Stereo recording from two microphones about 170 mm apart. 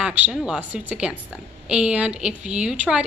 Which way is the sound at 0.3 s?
5° right (ahead or behind).